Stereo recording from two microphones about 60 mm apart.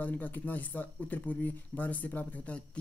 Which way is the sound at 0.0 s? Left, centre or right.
Left.